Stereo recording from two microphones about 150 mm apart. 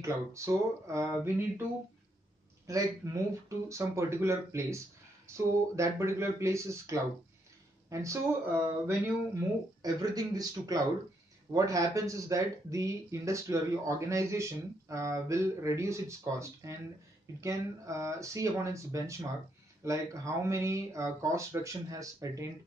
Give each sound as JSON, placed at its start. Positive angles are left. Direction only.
{"t": 0.0, "sound": "speech", "side_deg": -20}
{"t": 2.6, "sound": "speech", "side_deg": -20}